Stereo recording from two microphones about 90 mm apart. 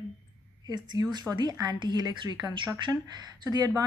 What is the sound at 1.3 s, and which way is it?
A woman's voice, 45° right (ahead or behind).